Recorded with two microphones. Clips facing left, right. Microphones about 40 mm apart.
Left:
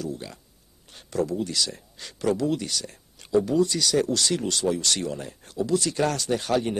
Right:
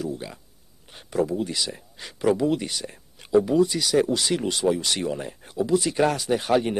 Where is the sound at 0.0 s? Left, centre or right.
Centre.